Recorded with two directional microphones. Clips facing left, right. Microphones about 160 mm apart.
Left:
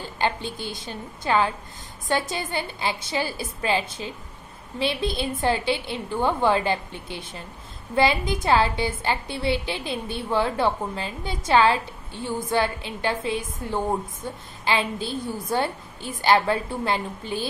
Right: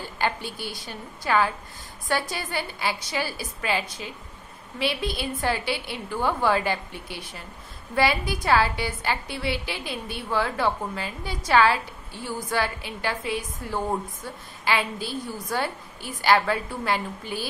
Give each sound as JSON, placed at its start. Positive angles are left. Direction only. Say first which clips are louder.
{"t": 0.2, "sound": "a woman's voice", "louder": "left 2 dB", "side_deg": 25}